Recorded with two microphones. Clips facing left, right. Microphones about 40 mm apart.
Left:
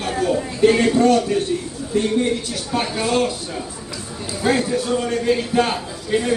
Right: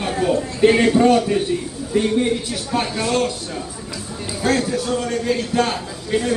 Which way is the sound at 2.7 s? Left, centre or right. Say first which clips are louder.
Even; centre.